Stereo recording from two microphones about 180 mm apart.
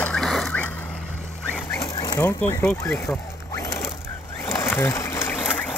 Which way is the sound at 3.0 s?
15° left (ahead or behind).